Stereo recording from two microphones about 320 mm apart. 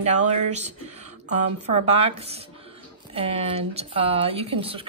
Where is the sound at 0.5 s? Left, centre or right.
Right.